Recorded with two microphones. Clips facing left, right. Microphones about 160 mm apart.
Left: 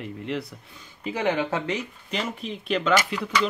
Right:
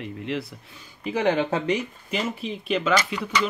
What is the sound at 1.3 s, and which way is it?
Speech, 20° right (ahead or behind).